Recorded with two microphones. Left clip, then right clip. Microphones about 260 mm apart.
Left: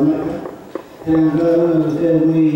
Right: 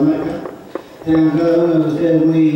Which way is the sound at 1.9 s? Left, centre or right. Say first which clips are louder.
Right 1 dB; centre.